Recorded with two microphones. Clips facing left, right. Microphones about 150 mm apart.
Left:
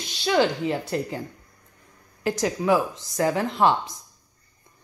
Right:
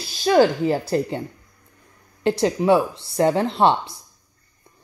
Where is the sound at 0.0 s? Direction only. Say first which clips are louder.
Right 5 dB; 40° right (ahead or behind).